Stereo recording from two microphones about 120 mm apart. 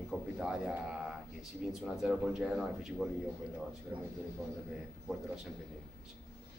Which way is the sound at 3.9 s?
15° right (ahead or behind).